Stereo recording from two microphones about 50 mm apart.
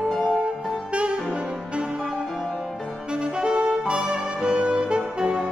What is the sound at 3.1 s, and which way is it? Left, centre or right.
Saxophone, centre.